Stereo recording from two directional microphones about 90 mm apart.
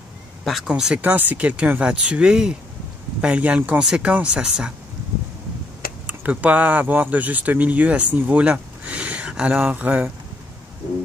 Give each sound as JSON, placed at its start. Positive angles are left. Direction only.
{"t": 0.7, "sound": "speech", "side_deg": -10}
{"t": 6.0, "sound": "speech", "side_deg": -15}